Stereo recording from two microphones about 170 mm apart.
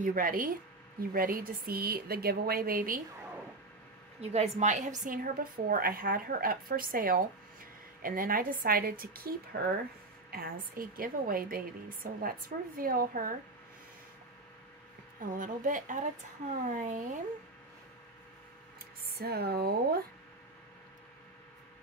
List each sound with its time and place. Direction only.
0.0 s a woman's voice: 55° right (ahead or behind)
4.2 s a woman's voice: 40° right (ahead or behind); by 13.3 s 60° right (ahead or behind)
15.1 s a woman's voice: 50° right (ahead or behind)
19.0 s speech: 70° right (ahead or behind)